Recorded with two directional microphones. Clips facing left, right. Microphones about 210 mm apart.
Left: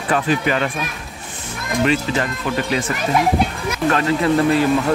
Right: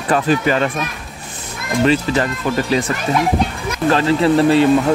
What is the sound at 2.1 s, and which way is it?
Speech, 35° right (ahead or behind).